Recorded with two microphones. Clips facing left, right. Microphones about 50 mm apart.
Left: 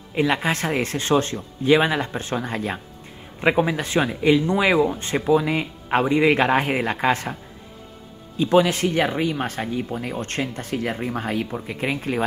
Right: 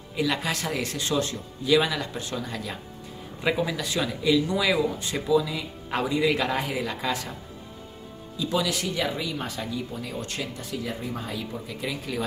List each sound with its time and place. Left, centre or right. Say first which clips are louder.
0.1 s speech: left 6 dB; left
5.9 s speech: left 6 dB; left
8.4 s speech: left 9 dB; left